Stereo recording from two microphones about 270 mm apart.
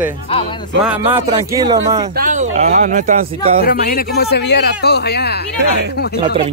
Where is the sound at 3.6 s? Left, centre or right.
Left.